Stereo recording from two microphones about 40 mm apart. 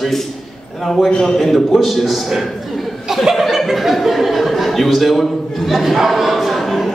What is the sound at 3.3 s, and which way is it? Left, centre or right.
A man's voice, centre.